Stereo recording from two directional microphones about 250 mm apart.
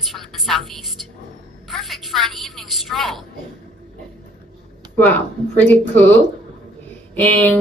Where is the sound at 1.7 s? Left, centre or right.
Centre.